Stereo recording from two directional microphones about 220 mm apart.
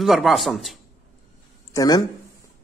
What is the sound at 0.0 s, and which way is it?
Speech, centre (ahead or behind).